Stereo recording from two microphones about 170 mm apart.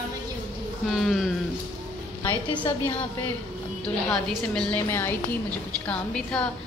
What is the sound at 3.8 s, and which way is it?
A woman's voice, 5° left (ahead or behind).